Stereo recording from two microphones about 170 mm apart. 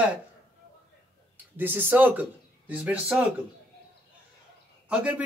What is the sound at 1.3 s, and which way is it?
Speech, 10° right (ahead or behind).